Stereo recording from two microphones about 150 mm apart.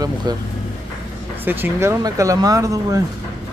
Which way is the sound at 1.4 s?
15° right (ahead or behind).